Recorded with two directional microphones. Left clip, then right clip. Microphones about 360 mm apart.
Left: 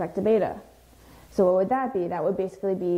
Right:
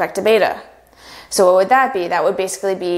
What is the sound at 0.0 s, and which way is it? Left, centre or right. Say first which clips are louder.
A woman's voice: right 9 dB; centre.